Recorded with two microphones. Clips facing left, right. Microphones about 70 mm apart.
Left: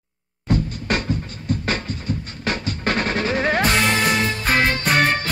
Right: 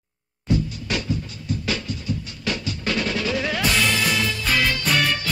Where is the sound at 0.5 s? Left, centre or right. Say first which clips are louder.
Left 2 dB; left.